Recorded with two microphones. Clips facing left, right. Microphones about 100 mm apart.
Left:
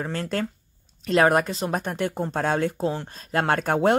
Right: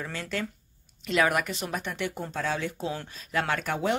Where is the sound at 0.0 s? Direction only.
45° left (ahead or behind).